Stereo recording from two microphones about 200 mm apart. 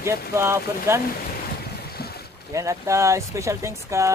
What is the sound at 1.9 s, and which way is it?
Boat, 50° left (ahead or behind).